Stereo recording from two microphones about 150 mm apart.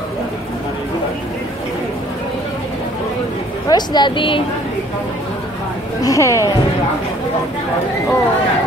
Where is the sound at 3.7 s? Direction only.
30° left (ahead or behind).